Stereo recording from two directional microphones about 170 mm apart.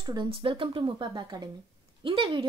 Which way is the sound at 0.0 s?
25° right (ahead or behind).